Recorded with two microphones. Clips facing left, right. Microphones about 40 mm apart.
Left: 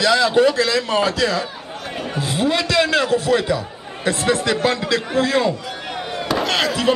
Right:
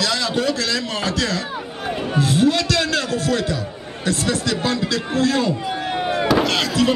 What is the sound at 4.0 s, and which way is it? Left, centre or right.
A man's voice, left.